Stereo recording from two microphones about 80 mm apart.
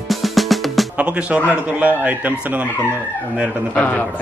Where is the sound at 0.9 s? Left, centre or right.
Centre.